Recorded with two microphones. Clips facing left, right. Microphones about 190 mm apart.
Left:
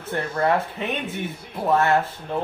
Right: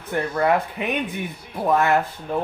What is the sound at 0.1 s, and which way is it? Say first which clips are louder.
Speech: right 2 dB; 15° right (ahead or behind).